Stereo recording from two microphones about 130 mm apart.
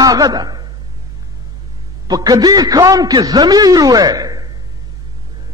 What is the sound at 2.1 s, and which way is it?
A man's voice, 30° right (ahead or behind).